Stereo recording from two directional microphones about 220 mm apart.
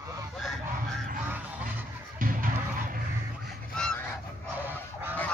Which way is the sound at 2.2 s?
40° right (ahead or behind).